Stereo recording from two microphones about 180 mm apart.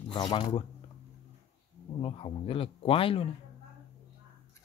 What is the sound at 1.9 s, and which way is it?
Speech, 30° left (ahead or behind).